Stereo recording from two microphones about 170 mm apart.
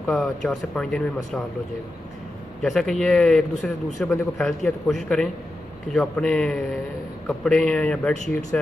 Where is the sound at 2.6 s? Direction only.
Centre (ahead or behind).